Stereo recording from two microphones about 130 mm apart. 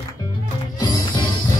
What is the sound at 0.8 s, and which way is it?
Music, 30° left (ahead or behind).